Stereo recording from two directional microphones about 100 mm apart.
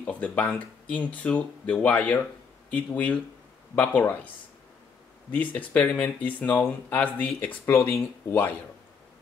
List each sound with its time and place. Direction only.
0.0 s speech: 15° left (ahead or behind)
5.3 s speech: 15° left (ahead or behind)
7.7 s speech: 25° left (ahead or behind)